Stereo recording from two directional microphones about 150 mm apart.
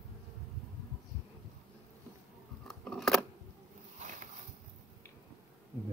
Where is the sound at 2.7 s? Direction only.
Centre (ahead or behind).